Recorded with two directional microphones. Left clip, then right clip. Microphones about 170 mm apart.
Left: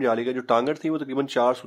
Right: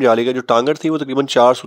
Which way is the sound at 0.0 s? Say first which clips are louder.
Right 10 dB; 45° right (ahead or behind).